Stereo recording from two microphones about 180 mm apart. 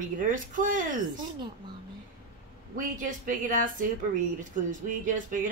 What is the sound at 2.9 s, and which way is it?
Speech, 45° right (ahead or behind).